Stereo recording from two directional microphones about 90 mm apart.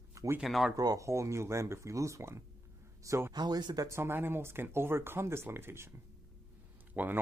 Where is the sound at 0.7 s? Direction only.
40° right (ahead or behind).